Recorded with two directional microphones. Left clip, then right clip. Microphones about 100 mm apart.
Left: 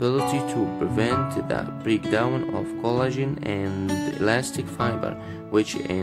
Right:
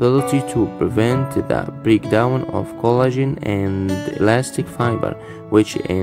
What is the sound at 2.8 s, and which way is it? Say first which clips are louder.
Speech: right 9 dB; 45° right (ahead or behind).